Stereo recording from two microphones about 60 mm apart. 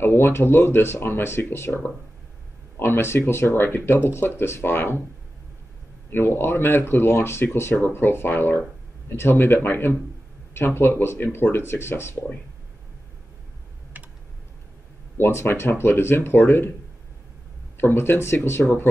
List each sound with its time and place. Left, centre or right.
0.0 s speech: left
2.8 s speech: left
6.0 s speech: left
13.9 s typing: right
15.1 s speech: left
17.7 s speech: left